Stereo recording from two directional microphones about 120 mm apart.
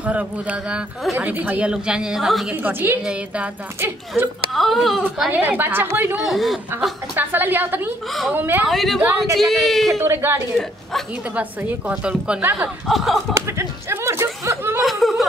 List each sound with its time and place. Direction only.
0.0 s a woman's voice: 10° right (ahead or behind)
2.5 s a woman's voice: 15° right (ahead or behind)
4.1 s speech: centre (ahead or behind)
5.3 s a woman's voice: 15° right (ahead or behind)
6.2 s speech: centre (ahead or behind)
7.2 s a woman's voice: 15° right (ahead or behind)
8.6 s speech: centre (ahead or behind)
9.8 s a woman's voice: 20° right (ahead or behind)
12.8 s speech: centre (ahead or behind)
13.3 s a sound: 25° right (ahead or behind)
14.8 s chuckle: centre (ahead or behind)